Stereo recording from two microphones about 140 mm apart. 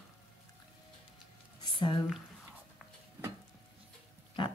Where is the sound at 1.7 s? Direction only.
35° left (ahead or behind).